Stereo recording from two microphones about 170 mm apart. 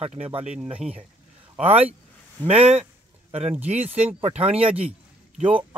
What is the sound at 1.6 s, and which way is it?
Speech, 35° right (ahead or behind).